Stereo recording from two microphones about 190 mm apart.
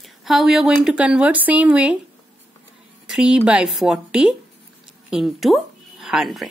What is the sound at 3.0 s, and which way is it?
Speech, 5° right (ahead or behind).